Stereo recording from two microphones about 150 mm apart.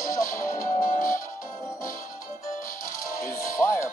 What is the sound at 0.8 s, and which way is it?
Music, 65° left (ahead or behind).